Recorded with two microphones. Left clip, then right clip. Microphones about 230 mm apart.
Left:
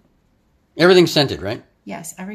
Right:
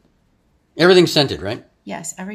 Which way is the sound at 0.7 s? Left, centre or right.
Centre.